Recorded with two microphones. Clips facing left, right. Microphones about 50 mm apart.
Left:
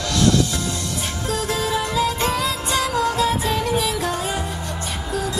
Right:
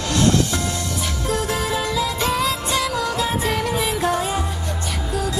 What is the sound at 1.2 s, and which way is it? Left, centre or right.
Music, right.